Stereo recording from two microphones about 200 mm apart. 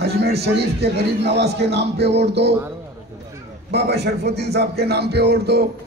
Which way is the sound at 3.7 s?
55° right (ahead or behind).